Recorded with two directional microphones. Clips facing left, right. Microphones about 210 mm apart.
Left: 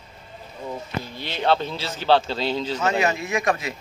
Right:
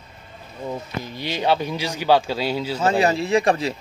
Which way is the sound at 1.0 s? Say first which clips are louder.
Right 2 dB; 15° right (ahead or behind).